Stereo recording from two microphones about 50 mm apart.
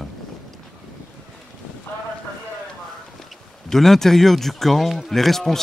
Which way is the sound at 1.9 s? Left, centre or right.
Left.